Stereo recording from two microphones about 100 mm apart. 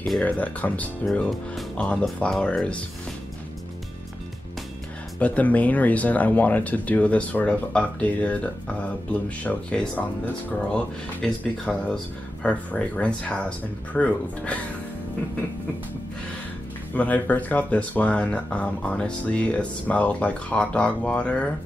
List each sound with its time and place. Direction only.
0.2 s speech: 15° left (ahead or behind)
5.2 s speech: 15° left (ahead or behind)
16.9 s speech: 15° left (ahead or behind)